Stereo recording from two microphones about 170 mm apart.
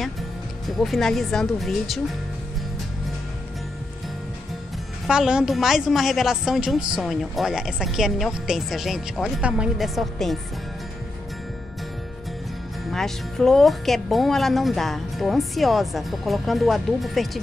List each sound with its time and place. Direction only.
0.7 s a woman's voice: centre (ahead or behind)
5.0 s a woman's voice: 5° right (ahead or behind)
12.9 s a woman's voice: 5° left (ahead or behind)